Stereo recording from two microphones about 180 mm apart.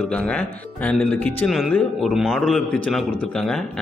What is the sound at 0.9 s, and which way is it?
A man's voice, 5° left (ahead or behind).